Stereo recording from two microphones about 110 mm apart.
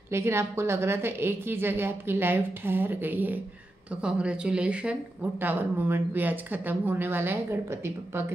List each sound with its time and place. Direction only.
0.1 s a woman's voice: 25° right (ahead or behind)